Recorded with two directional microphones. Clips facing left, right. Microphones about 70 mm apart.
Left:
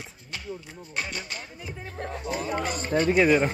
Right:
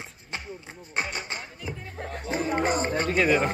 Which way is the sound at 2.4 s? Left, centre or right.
Right.